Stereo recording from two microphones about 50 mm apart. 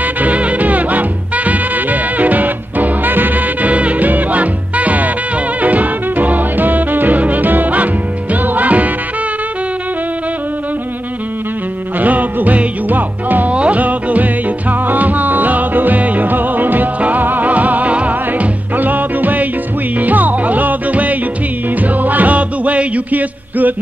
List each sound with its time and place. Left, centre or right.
0.0 s swing music: right
5.6 s music: right
12.0 s music: right